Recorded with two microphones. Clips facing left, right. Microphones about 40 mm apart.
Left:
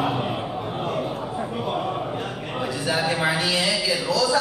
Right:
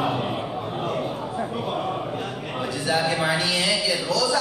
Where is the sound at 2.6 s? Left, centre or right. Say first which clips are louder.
Even; left.